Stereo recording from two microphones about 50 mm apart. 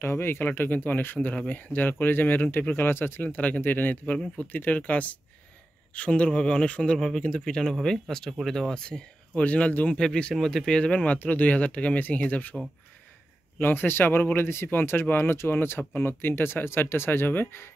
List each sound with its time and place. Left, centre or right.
0.0 s speech: left
0.5 s speech: left
1.2 s speech: left
1.5 s speech: left
2.7 s speech: left; by 9.0 s centre
9.3 s speech: left; by 10.8 s centre
10.8 s speech: left
13.6 s speech: left